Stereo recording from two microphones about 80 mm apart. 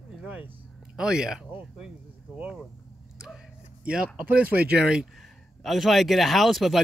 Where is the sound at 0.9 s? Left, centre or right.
Centre.